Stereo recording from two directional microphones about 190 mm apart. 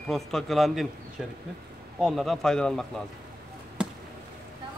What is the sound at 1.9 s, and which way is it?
Speech, centre (ahead or behind).